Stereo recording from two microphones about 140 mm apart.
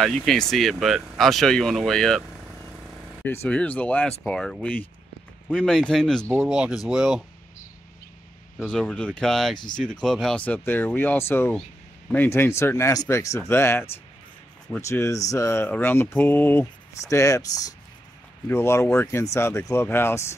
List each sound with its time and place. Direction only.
0.0 s speech: centre (ahead or behind)
3.3 s speech: 10° left (ahead or behind); by 7.2 s 5° right (ahead or behind)
8.6 s speech: 10° left (ahead or behind)